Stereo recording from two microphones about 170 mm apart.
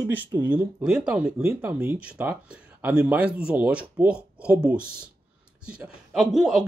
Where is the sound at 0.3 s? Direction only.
10° right (ahead or behind).